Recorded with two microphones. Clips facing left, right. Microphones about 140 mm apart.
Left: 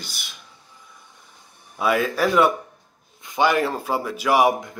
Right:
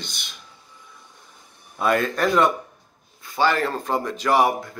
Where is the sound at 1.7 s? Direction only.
5° left (ahead or behind).